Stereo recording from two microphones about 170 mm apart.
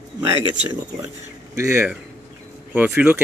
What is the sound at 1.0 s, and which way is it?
A man's voice, 15° right (ahead or behind).